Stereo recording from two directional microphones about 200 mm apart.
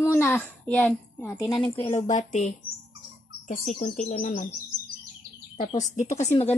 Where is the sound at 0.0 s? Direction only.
10° left (ahead or behind).